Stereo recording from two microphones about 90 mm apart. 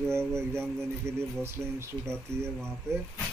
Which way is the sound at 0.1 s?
30° right (ahead or behind).